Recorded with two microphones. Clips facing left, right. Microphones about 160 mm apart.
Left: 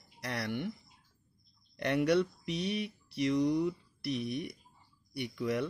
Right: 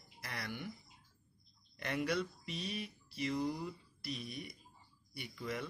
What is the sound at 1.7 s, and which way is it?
Speech, 70° left (ahead or behind).